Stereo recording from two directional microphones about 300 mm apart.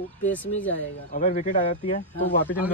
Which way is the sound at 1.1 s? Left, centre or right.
Left.